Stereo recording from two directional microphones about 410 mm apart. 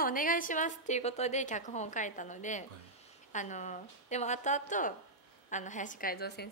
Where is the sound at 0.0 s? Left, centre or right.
Centre.